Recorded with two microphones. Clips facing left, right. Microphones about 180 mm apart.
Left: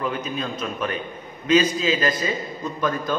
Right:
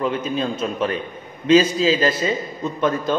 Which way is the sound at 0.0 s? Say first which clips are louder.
Right 5 dB; 30° right (ahead or behind).